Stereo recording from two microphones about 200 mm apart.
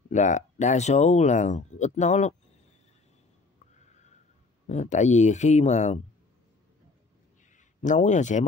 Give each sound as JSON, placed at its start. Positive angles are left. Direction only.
{"t": 0.1, "sound": "speech", "side_deg": 35}
{"t": 4.6, "sound": "speech", "side_deg": 35}
{"t": 7.5, "sound": "speech", "side_deg": 40}